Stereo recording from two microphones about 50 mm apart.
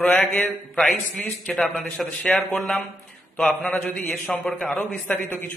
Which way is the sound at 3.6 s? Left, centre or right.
Left.